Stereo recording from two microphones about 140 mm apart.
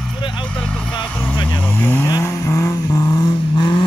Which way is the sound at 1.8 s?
15° left (ahead or behind).